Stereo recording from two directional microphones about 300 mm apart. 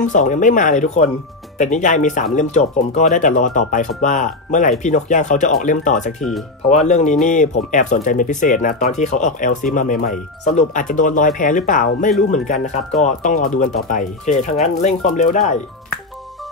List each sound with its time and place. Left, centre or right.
0.0 s speech: left